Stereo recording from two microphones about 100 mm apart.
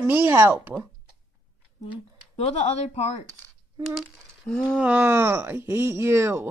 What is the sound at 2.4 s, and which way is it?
Speech, 90° left.